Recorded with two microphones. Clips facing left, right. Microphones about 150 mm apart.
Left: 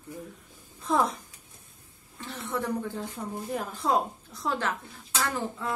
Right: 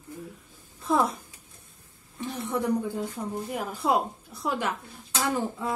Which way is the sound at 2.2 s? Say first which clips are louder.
Right 4 dB; 15° right (ahead or behind).